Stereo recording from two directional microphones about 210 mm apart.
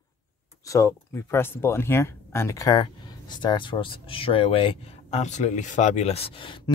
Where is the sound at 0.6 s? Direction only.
15° left (ahead or behind).